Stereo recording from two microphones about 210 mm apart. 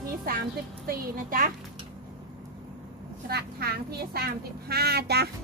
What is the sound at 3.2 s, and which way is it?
A child's voice, 50° right (ahead or behind).